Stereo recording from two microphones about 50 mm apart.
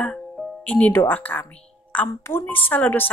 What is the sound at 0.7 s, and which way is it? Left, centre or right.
Speech, left.